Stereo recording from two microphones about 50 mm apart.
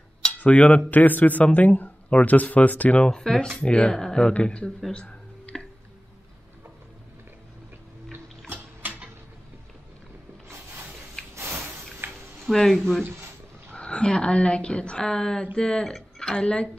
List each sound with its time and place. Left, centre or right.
0.2 s speech: left
3.1 s speech: centre
4.9 s a sound: left
8.1 s music: right
11.3 s a sound: right
12.7 s speech: centre
13.7 s a woman's voice: left